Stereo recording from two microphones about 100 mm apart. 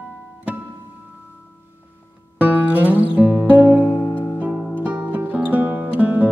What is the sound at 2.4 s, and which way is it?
Music, 15° right (ahead or behind).